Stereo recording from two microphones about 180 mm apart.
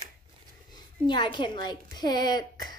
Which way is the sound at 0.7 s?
25° left (ahead or behind).